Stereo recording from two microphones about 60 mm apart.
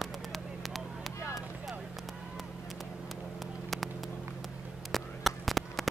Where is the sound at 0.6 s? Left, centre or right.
Centre.